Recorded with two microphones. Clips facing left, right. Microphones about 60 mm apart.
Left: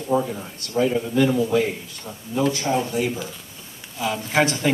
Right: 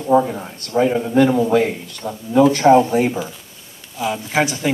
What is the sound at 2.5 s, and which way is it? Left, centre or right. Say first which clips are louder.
Speech: right 12 dB; right.